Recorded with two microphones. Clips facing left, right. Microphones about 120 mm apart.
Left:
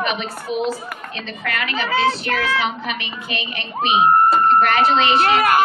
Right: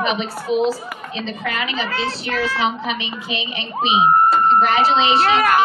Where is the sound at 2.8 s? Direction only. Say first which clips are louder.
Right 2 dB; 30° right (ahead or behind).